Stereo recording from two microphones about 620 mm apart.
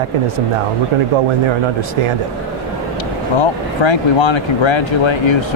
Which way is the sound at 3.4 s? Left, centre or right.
Left.